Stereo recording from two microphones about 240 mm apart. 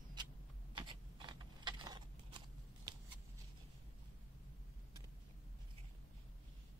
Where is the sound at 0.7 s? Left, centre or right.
Centre.